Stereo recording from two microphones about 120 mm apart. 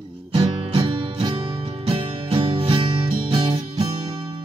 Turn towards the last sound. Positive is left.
turn(degrees=-55)  # may be behind; listen again after turning